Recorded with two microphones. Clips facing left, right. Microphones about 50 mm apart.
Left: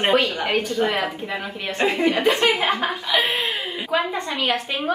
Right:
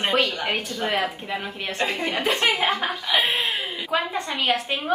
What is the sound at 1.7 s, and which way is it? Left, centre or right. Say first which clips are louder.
Speech: left 5 dB; left.